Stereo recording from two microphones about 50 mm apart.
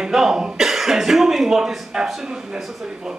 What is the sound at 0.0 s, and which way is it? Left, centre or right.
Speech, centre.